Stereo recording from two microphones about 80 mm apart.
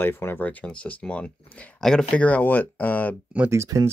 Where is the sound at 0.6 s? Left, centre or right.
Centre.